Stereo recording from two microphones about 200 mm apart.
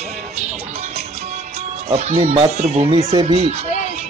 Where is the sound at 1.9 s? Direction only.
30° right (ahead or behind).